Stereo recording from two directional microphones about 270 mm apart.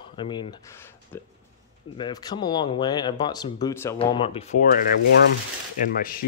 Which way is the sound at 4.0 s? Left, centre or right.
Centre.